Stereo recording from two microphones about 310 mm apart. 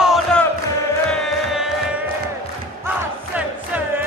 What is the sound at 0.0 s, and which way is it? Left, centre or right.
Music, centre.